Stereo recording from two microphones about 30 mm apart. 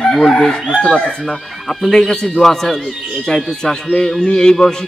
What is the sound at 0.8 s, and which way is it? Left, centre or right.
Speech, left.